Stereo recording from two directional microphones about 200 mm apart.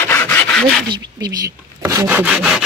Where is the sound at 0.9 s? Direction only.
20° right (ahead or behind); by 2.6 s 5° right (ahead or behind).